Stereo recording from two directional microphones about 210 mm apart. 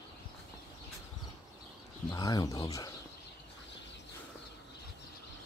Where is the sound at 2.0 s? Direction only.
15° left (ahead or behind).